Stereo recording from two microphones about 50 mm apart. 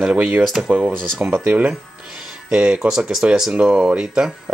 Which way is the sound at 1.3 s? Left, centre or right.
Right.